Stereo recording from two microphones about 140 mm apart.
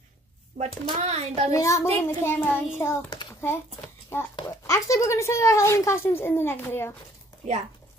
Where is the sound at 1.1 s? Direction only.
50° right (ahead or behind).